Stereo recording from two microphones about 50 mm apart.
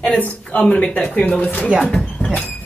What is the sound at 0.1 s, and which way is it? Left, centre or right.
A woman's voice, left.